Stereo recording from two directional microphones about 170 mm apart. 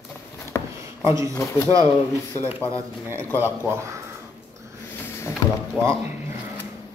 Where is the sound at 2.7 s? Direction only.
15° right (ahead or behind).